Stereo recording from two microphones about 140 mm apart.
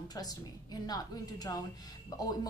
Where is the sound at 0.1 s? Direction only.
30° left (ahead or behind).